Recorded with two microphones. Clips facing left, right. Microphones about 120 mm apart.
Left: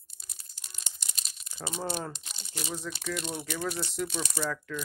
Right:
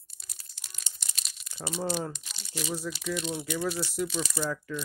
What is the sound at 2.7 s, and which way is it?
Speech, 5° right (ahead or behind).